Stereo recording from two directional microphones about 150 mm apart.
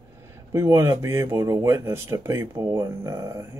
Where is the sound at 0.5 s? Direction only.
20° right (ahead or behind).